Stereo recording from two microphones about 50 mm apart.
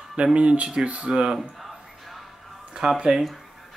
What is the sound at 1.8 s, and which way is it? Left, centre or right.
Music, centre.